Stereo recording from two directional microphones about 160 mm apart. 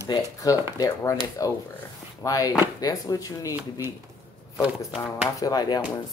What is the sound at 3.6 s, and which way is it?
Speech, 15° right (ahead or behind).